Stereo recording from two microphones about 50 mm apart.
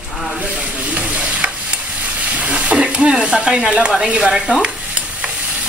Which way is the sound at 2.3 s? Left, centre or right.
Right.